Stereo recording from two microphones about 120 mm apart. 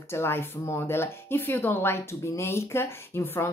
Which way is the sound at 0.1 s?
20° left (ahead or behind).